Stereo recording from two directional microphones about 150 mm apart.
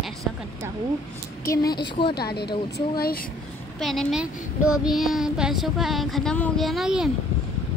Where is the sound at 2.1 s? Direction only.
90° left.